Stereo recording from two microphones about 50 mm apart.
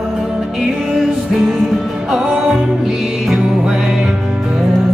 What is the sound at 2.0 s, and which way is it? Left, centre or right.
Music, centre.